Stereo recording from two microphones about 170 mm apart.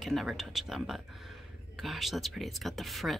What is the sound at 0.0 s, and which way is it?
Speech, centre (ahead or behind).